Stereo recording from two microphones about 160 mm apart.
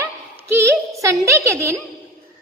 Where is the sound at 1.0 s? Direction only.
20° right (ahead or behind).